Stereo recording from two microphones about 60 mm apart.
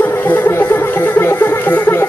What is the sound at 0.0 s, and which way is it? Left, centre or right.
Music, left.